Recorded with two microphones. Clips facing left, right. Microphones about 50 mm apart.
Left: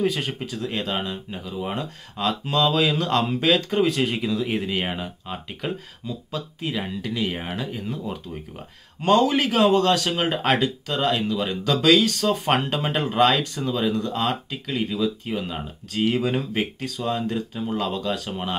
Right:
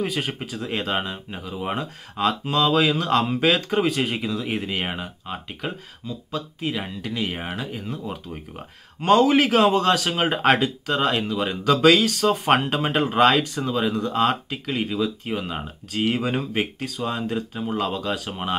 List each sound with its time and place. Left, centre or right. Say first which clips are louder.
0.0 s speech: left 2 dB; centre
9.0 s speech: right 2 dB; centre